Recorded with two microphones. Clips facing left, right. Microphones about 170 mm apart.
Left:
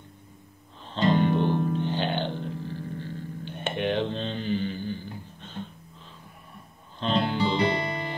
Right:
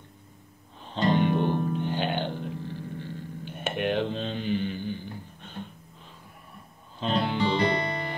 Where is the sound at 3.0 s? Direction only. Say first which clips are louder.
Left 1 dB; 5° right (ahead or behind).